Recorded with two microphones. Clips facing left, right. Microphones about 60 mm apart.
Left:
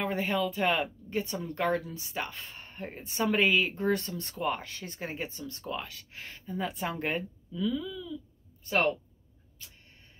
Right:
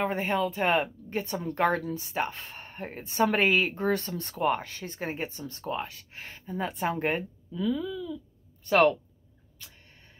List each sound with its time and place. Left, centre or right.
0.0 s speech: right
8.6 s speech: right